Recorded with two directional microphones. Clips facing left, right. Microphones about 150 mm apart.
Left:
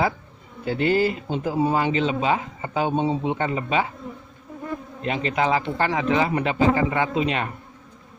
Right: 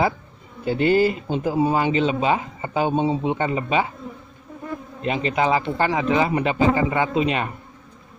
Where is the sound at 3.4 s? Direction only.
20° right (ahead or behind).